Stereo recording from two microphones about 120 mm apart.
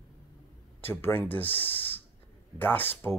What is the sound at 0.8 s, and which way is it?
Speech, 15° left (ahead or behind).